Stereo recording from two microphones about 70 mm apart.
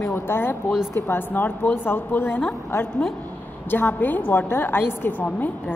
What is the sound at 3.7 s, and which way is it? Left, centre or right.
A woman's voice, left.